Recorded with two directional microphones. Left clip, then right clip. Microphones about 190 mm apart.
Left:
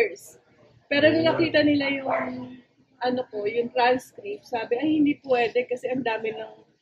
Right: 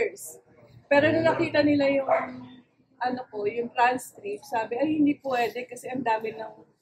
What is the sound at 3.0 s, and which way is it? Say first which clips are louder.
A woman's voice: left 2 dB; 10° right (ahead or behind).